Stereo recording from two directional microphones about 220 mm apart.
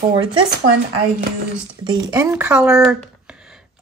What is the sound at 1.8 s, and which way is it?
Speech, 20° right (ahead or behind).